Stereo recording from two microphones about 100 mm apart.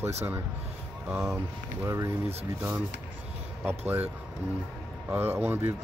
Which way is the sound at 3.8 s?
20° right (ahead or behind).